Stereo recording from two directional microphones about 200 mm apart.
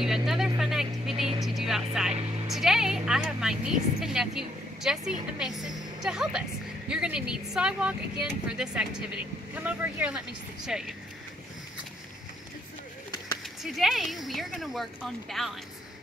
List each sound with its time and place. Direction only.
0.0 s vehicle: centre (ahead or behind)
2.5 s speech: centre (ahead or behind)
5.7 s a sound: 20° right (ahead or behind)
6.0 s speech: 5° right (ahead or behind)
13.6 s speech: centre (ahead or behind)